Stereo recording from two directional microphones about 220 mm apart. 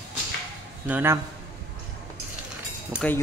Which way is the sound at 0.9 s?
10° right (ahead or behind).